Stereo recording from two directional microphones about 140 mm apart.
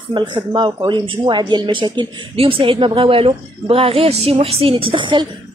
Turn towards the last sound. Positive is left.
turn(degrees=-35)  # may be behind; listen again after turning